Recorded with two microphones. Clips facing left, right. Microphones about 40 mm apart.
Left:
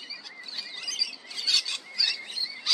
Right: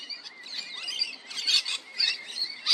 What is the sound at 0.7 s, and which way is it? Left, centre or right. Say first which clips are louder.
Bird: even; right.